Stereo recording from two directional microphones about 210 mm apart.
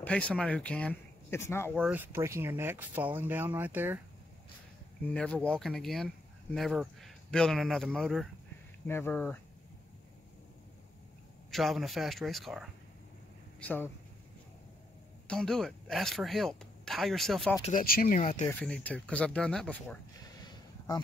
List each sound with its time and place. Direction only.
0.0 s speech: 5° left (ahead or behind)
1.8 s speech: 10° right (ahead or behind)
5.1 s speech: 5° left (ahead or behind)
11.5 s speech: centre (ahead or behind)
15.2 s speech: 5° left (ahead or behind)
17.6 s speech: 30° left (ahead or behind)
17.8 s speech: 40° left (ahead or behind)
18.5 s speech: 5° left (ahead or behind)